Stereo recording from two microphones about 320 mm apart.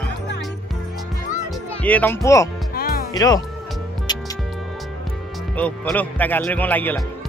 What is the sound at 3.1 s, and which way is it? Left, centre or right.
Speech, centre.